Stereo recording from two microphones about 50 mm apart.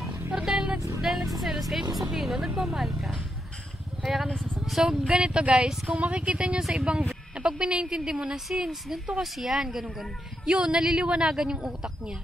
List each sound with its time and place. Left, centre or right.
0.4 s vehicle: centre
1.0 s speech: centre
4.0 s speech: centre
4.6 s a sound: centre
5.0 s a woman's voice: centre
6.8 s a woman's voice: centre
7.3 s a woman's voice: right
8.8 s a woman's voice: centre